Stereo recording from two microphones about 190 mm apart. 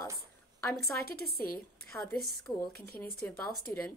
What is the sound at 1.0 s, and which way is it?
Speech, 50° left (ahead or behind).